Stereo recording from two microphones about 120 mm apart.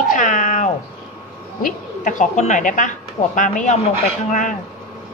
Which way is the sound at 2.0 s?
85° left.